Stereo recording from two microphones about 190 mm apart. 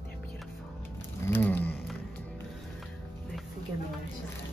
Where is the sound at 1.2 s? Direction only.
10° left (ahead or behind).